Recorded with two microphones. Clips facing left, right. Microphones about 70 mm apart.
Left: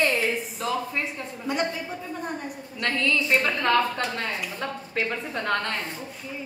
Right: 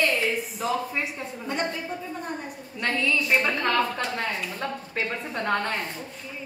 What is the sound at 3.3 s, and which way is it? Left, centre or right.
A woman's voice, centre.